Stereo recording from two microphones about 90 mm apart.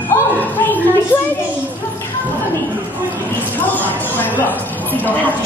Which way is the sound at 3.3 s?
20° left (ahead or behind).